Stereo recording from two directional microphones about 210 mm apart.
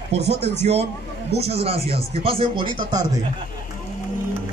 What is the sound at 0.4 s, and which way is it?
Speech, 30° right (ahead or behind).